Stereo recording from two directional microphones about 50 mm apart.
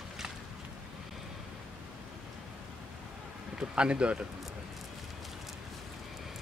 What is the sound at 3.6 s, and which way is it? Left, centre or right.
Speech, right.